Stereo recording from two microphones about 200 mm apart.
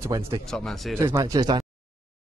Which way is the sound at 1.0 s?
15° right (ahead or behind).